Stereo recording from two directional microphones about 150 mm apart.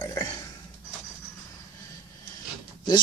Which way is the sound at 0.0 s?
25° left (ahead or behind).